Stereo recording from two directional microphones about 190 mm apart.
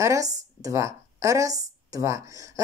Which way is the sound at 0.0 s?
15° right (ahead or behind).